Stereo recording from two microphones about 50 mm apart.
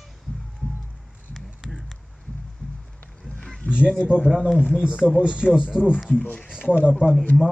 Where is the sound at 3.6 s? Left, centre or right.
Left.